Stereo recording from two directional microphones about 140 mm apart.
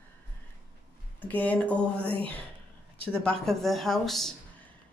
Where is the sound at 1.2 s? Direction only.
10° left (ahead or behind).